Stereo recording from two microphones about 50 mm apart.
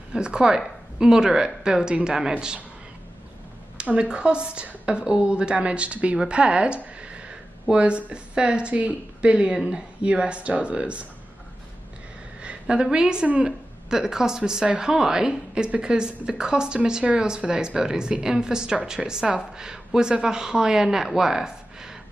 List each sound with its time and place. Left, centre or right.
0.1 s a woman's voice: centre
3.7 s a woman's voice: right
12.4 s a sound: right
12.9 s a woman's voice: centre